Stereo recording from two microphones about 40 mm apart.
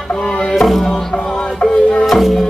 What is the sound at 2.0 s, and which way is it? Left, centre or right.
Music, centre.